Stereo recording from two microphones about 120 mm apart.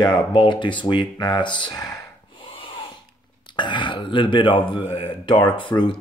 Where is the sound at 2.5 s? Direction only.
45° left (ahead or behind).